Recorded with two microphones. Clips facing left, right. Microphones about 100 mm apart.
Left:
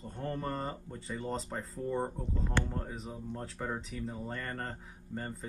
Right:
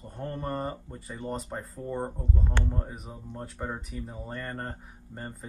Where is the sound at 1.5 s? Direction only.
Centre (ahead or behind).